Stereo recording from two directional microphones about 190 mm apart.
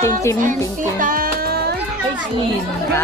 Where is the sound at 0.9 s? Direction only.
45° right (ahead or behind).